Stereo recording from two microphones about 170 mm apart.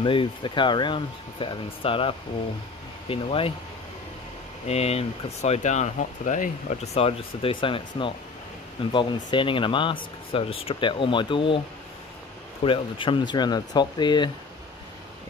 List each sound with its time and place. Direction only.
0.0 s speech: 30° left (ahead or behind)
4.6 s speech: 40° left (ahead or behind)
12.6 s speech: 30° left (ahead or behind)